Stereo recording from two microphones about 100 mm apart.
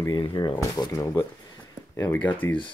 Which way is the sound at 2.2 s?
15° left (ahead or behind).